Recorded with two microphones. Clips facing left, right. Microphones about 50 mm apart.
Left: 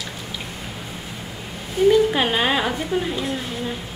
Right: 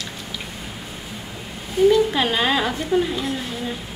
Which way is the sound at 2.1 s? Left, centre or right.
Centre.